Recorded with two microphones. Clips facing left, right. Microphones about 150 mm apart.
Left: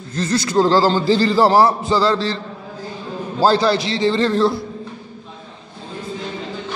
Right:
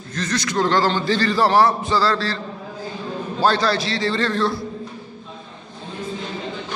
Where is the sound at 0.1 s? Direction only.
30° left (ahead or behind).